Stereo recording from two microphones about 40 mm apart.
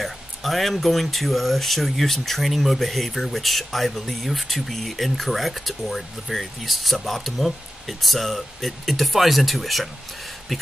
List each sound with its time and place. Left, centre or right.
0.0 s speech: centre